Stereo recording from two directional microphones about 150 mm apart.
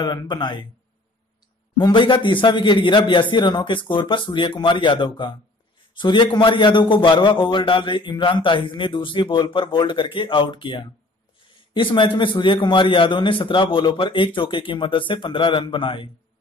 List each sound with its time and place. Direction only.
0.0 s speech: 30° left (ahead or behind)
1.8 s a man's voice: 30° left (ahead or behind)